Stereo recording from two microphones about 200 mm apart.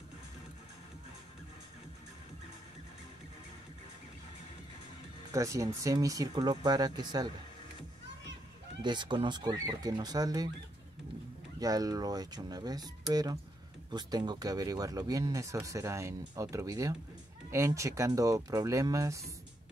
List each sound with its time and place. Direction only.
5.3 s speech: 15° right (ahead or behind)
8.8 s speech: 20° right (ahead or behind)
11.6 s speech: 20° right (ahead or behind)